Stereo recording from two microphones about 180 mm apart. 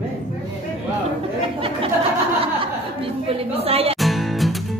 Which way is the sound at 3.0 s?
30° right (ahead or behind).